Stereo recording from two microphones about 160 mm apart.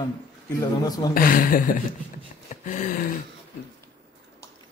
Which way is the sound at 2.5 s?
55° left (ahead or behind).